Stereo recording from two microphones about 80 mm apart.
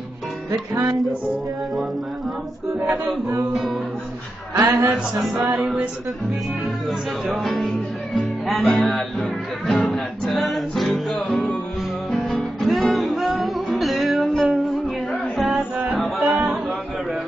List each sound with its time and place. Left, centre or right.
4.6 s speech: right
4.9 s music: centre
6.9 s speech: centre
8.6 s music: centre
15.9 s music: centre